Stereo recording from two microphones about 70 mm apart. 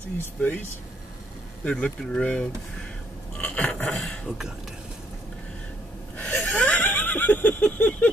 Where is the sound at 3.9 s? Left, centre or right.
Centre.